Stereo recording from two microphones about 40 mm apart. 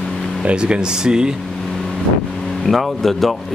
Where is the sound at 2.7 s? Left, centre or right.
Centre.